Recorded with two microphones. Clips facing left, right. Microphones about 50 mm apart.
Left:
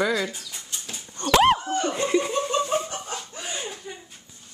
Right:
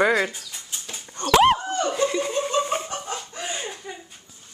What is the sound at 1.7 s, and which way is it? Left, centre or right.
Laughter, centre.